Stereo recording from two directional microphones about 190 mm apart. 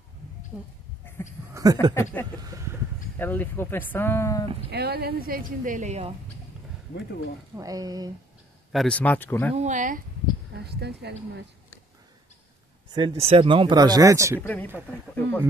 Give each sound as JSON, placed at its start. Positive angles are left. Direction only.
{"t": 1.0, "sound": "goat", "side_deg": 10}
{"t": 1.5, "sound": "speech", "side_deg": -20}
{"t": 3.2, "sound": "speech", "side_deg": 10}
{"t": 4.6, "sound": "speech", "side_deg": -60}
{"t": 7.5, "sound": "speech", "side_deg": -20}
{"t": 8.7, "sound": "speech", "side_deg": 5}
{"t": 9.6, "sound": "speech", "side_deg": -40}
{"t": 10.5, "sound": "speech", "side_deg": -60}
{"t": 12.9, "sound": "speech", "side_deg": -25}
{"t": 14.4, "sound": "speech", "side_deg": 10}